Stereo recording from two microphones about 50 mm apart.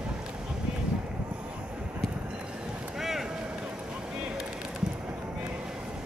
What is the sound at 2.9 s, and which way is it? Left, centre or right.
Vehicle, centre.